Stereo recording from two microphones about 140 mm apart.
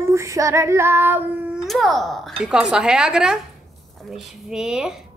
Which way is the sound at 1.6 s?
Centre (ahead or behind).